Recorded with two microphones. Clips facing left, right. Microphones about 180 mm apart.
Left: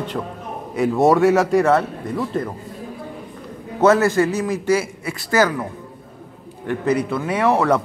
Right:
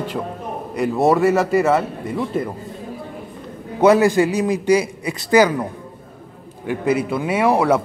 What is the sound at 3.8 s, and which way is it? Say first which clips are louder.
A man's voice: right 2 dB; 15° right (ahead or behind).